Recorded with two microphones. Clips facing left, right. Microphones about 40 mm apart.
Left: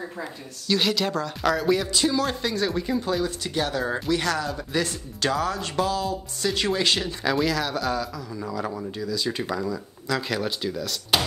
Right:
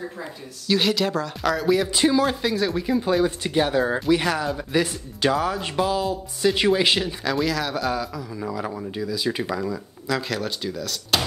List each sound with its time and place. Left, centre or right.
0.7 s speech: centre
1.9 s speech: right
2.2 s speech: centre
3.0 s speech: centre
3.8 s speech: centre
7.2 s speech: centre